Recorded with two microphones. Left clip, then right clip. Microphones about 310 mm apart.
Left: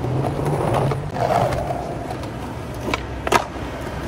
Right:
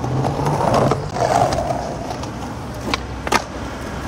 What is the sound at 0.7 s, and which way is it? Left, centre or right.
Vehicle, right.